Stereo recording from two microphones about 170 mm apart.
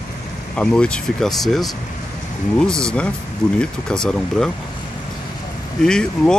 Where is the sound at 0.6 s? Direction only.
5° left (ahead or behind).